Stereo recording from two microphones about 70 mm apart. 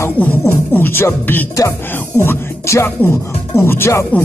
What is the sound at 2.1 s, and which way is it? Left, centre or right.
Music, left.